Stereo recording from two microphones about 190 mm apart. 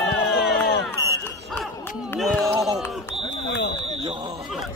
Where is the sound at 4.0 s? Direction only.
25° right (ahead or behind).